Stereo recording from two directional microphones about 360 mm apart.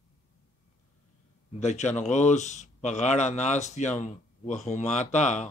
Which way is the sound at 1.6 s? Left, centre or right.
Centre.